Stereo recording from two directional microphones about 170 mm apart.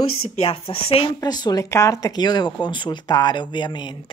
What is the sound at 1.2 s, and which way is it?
Speech, 25° left (ahead or behind).